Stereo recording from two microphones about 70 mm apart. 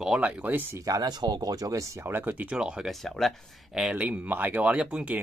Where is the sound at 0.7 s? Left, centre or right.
Right.